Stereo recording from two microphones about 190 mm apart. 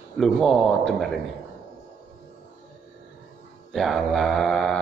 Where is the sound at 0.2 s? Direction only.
Centre (ahead or behind).